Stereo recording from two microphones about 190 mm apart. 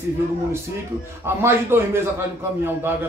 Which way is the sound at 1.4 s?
15° right (ahead or behind).